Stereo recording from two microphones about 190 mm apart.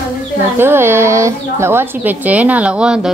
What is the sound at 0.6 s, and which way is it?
A woman's voice, 10° right (ahead or behind).